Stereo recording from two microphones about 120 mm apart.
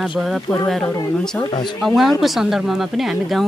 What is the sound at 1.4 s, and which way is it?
A woman's voice, centre (ahead or behind).